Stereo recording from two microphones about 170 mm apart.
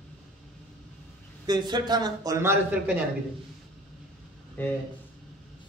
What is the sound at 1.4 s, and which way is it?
A man's voice, 25° right (ahead or behind).